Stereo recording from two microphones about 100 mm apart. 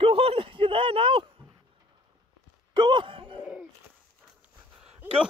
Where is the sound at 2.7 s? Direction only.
50° right (ahead or behind).